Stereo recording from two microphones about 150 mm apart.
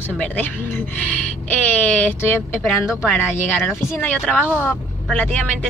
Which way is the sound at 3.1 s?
15° left (ahead or behind).